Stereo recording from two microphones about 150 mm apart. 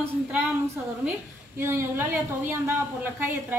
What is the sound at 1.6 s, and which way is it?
A woman's voice, 15° right (ahead or behind).